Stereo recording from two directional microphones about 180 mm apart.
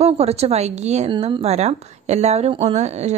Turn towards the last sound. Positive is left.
turn(degrees=-40)  # may be behind; listen again after turning